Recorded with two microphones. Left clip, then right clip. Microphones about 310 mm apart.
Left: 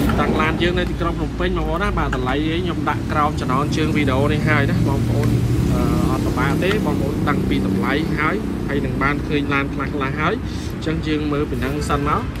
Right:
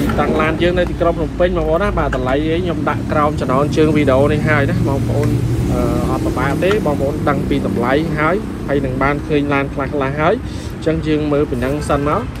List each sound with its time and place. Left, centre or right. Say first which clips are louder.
0.2 s speech: right 5 dB; centre
6.4 s speech: right 5 dB; centre